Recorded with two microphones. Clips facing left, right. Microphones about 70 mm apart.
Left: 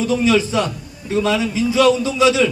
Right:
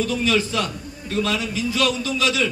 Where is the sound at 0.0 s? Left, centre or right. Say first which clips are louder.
Left 5 dB; centre.